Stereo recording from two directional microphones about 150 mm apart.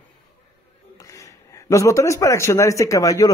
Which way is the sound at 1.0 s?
20° left (ahead or behind).